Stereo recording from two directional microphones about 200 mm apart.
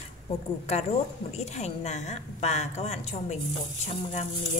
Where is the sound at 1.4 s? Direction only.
35° left (ahead or behind).